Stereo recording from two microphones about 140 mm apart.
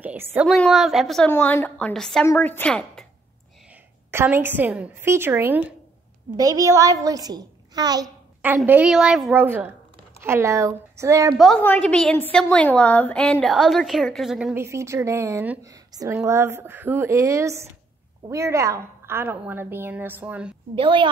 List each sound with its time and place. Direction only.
0.0 s a woman's voice: 10° right (ahead or behind)
0.5 s a woman's voice: centre (ahead or behind)
1.3 s a woman's voice: 15° left (ahead or behind)
2.2 s a woman's voice: 15° left (ahead or behind)
4.1 s a woman's voice: 15° right (ahead or behind)
6.3 s a woman's voice: 25° right (ahead or behind)
8.6 s a woman's voice: 10° right (ahead or behind)
11.3 s a woman's voice: centre (ahead or behind)
14.5 s a woman's voice: 20° right (ahead or behind)
15.6 s a woman's voice: 25° right (ahead or behind); by 20.5 s 10° right (ahead or behind)
20.7 s a woman's voice: 35° right (ahead or behind)